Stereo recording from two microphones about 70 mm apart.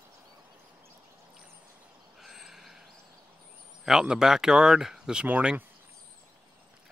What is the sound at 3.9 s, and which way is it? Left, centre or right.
Speech, centre.